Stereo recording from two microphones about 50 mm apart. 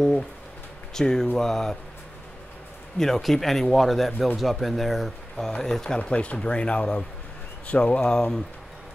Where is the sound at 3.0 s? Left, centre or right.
Centre.